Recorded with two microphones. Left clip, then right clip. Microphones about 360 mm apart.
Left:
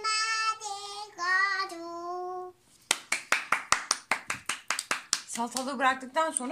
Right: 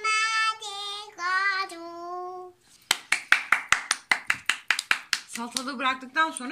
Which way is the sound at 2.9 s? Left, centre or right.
Centre.